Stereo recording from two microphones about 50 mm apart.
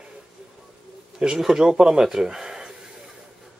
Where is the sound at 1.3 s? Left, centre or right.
Centre.